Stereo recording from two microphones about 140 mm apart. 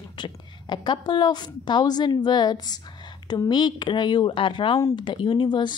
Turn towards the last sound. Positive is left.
turn(degrees=35)  # may be behind; listen again after turning